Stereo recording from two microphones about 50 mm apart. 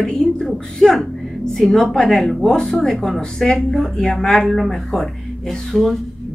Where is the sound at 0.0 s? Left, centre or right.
Centre.